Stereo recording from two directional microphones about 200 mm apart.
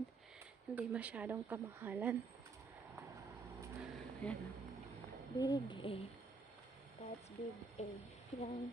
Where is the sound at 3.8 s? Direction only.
Centre (ahead or behind).